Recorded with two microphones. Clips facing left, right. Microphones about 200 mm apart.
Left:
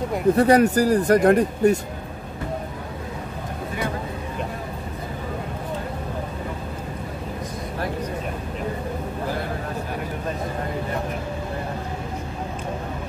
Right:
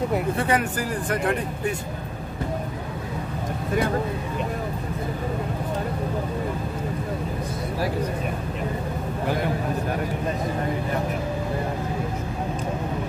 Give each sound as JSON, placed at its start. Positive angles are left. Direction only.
{"t": 0.4, "sound": "speech", "side_deg": 40}